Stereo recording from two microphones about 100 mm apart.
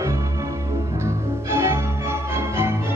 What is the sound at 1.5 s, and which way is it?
Music, 25° right (ahead or behind).